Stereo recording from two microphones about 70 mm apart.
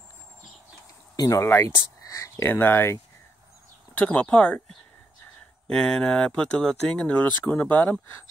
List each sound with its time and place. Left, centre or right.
1.1 s speech: left
1.4 s speech: left
2.0 s a sound: left
2.5 s speech: left
3.9 s speech: centre
5.7 s speech: centre